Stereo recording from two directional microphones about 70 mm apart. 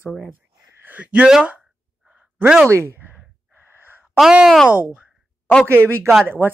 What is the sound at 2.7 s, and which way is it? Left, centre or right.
Speech, right.